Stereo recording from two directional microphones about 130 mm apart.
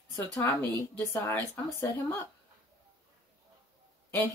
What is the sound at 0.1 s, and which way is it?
A woman's voice, 20° left (ahead or behind).